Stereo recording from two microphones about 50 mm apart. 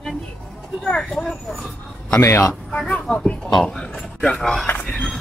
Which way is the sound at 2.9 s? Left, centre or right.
Left.